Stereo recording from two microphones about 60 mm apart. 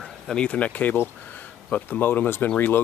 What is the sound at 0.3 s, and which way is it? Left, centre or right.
Speech, centre.